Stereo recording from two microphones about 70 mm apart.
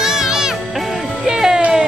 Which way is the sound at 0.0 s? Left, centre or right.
Centre.